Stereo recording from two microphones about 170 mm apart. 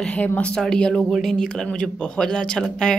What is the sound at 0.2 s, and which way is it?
A woman's voice, 10° left (ahead or behind).